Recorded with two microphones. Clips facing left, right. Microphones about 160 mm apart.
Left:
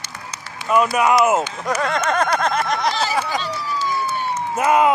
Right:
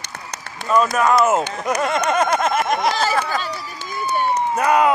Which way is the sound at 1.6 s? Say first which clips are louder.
Right 1 dB; 20° right (ahead or behind).